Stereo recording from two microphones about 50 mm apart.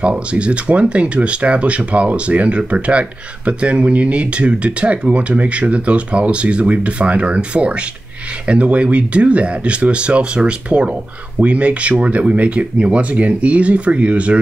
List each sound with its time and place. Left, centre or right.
0.0 s speech: right